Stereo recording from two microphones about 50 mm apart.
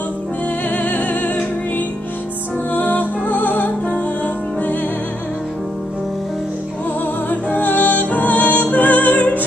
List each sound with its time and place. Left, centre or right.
0.7 s music: left
2.7 s music: left
7.2 s music: left